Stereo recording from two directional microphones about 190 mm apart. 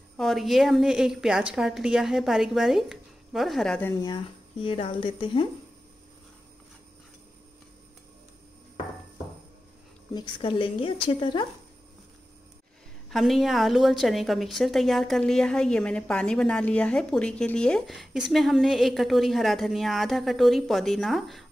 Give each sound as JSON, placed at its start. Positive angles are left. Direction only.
{"t": 0.2, "sound": "a woman's voice", "side_deg": 0}
{"t": 4.0, "sound": "speech", "side_deg": 25}
{"t": 10.1, "sound": "speech", "side_deg": 25}
{"t": 13.1, "sound": "a woman's voice", "side_deg": 0}